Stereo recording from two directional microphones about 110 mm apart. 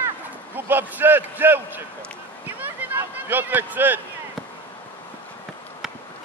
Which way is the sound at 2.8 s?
15° right (ahead or behind).